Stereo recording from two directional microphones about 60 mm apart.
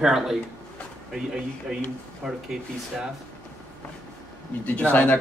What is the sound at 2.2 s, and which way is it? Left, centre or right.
Speech, centre.